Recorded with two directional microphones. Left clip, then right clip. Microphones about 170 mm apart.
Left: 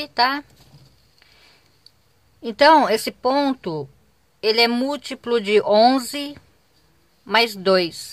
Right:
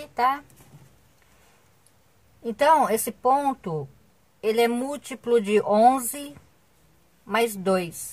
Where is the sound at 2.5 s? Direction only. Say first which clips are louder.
Left 5 dB; 20° left (ahead or behind).